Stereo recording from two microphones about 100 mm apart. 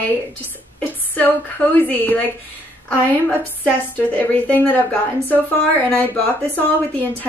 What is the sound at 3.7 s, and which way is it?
A woman's voice, 15° left (ahead or behind).